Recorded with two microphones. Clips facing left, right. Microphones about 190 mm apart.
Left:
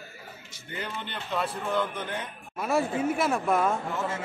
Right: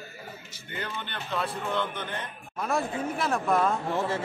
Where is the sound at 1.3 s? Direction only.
10° left (ahead or behind).